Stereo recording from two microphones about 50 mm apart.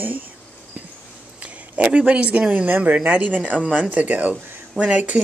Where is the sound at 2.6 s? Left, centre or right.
Right.